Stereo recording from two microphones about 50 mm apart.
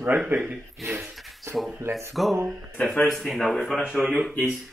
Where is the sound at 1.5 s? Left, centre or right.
Centre.